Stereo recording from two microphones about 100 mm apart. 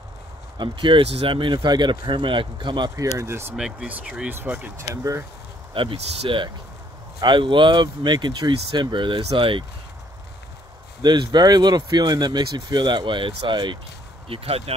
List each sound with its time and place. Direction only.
0.6 s speech: 55° right (ahead or behind)
3.0 s speech: 30° right (ahead or behind)
3.5 s speech: 10° right (ahead or behind)
4.7 s speech: 30° right (ahead or behind)
5.8 s speech: 60° right (ahead or behind)
11.0 s speech: 45° right (ahead or behind)
14.3 s speech: 80° right